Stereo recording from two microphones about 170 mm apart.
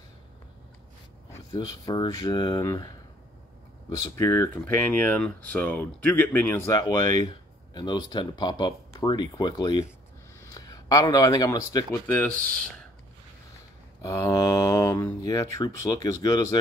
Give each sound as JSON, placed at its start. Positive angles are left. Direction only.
{"t": 1.3, "sound": "a sound", "side_deg": 20}
{"t": 1.9, "sound": "speech", "side_deg": 25}
{"t": 4.2, "sound": "speech", "side_deg": 15}
{"t": 14.0, "sound": "speech", "side_deg": 20}